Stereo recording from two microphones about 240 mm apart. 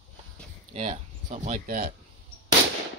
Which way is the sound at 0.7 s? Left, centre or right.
Right.